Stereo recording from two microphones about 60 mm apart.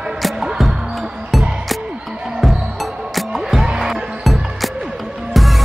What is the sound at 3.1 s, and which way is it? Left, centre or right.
Music, centre.